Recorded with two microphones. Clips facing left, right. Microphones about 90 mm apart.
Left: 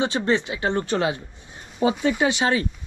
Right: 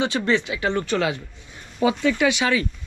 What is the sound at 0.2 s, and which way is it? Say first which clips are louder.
Speech: even; 25° left (ahead or behind).